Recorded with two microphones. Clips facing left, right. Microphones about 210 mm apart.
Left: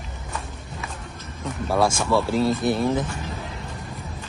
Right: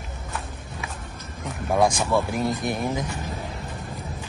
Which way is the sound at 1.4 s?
15° right (ahead or behind).